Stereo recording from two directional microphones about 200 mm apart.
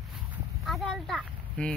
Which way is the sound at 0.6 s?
Centre (ahead or behind).